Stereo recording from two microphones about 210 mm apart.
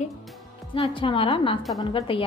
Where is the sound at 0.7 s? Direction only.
25° left (ahead or behind).